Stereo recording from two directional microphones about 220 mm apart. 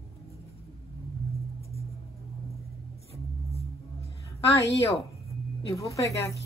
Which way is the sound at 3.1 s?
25° right (ahead or behind).